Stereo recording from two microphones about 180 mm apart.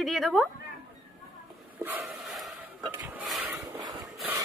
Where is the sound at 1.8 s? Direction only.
5° right (ahead or behind).